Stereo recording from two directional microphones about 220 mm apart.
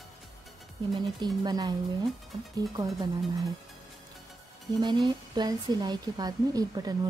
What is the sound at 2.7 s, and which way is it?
Speech, 15° right (ahead or behind).